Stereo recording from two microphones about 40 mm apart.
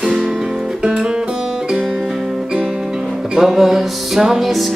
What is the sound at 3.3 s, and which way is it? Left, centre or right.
Music, centre.